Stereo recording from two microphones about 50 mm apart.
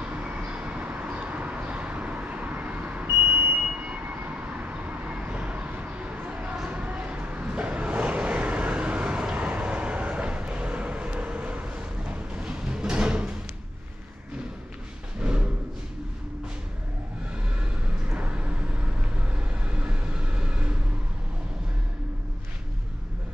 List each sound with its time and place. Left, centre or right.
0.0 s vehicle: right
15.1 s a sound: right
17.6 s vehicle: right